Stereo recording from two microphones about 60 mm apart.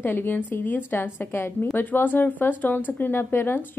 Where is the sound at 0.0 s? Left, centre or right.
Left.